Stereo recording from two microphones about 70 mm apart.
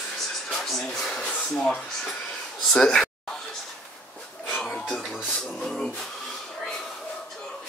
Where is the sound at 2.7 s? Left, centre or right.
Centre.